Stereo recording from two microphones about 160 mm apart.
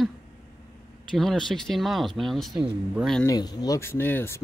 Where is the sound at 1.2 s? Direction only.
Centre (ahead or behind).